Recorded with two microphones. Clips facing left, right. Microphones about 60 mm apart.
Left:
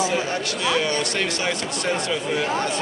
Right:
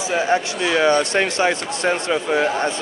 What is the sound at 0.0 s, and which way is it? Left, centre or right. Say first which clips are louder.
Speech: right 4 dB; right.